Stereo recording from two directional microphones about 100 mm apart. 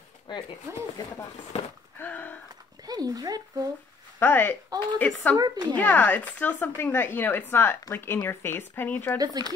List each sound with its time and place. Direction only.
0.3 s speech: 50° left (ahead or behind)
2.0 s a sound: 15° left (ahead or behind)
2.8 s speech: 40° right (ahead or behind)
4.2 s speech: 20° left (ahead or behind)
5.4 s a woman's voice: 40° right (ahead or behind)
5.8 s speech: 15° left (ahead or behind)
9.2 s a woman's voice: 40° right (ahead or behind)